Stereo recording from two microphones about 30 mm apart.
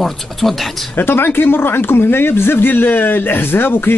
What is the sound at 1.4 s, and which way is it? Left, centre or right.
Speech, left.